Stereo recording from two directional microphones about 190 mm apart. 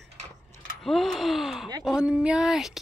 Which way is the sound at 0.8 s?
Centre (ahead or behind).